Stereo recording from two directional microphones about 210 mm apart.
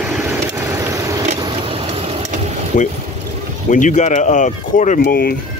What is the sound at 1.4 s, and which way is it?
Vehicle, 25° right (ahead or behind).